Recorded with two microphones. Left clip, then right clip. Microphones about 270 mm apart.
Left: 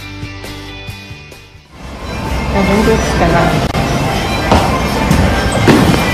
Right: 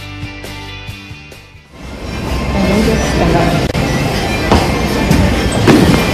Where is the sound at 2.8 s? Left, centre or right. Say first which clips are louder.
Left 2 dB; centre.